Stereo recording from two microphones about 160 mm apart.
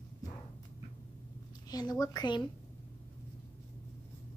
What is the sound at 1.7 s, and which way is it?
Speech, 25° left (ahead or behind).